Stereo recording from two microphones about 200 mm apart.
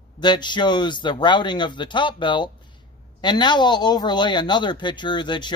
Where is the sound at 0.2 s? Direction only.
20° left (ahead or behind).